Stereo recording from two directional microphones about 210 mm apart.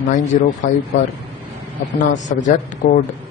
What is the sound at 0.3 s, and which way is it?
Speech, 35° left (ahead or behind).